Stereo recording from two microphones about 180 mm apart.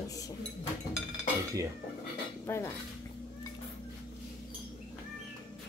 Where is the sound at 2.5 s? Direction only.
15° left (ahead or behind).